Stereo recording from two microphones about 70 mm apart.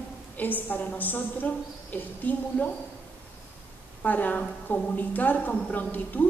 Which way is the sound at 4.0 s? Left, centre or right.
Left.